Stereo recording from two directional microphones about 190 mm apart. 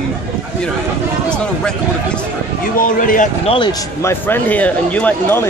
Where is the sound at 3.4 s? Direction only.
25° left (ahead or behind).